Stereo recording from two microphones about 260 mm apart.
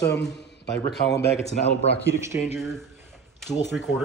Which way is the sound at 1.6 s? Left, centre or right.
Left.